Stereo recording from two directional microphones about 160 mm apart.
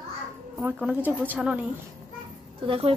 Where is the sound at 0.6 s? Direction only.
10° right (ahead or behind).